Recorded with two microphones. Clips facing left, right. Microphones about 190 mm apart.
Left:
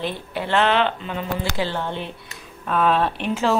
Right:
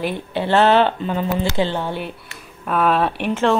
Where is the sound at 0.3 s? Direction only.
30° right (ahead or behind).